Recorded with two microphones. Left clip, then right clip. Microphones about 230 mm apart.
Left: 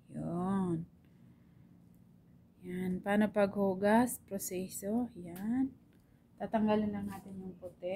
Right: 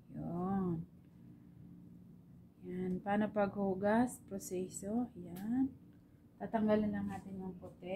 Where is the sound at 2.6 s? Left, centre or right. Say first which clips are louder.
Left 2 dB; left.